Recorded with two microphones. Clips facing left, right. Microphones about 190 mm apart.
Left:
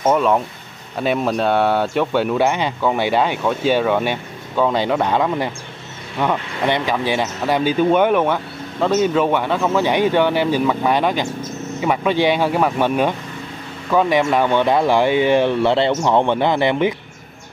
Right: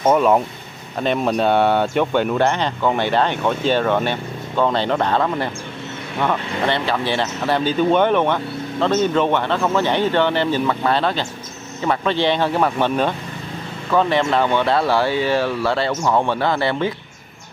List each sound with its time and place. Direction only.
0.0 s speech: 5° right (ahead or behind)
0.9 s speech: 5° left (ahead or behind)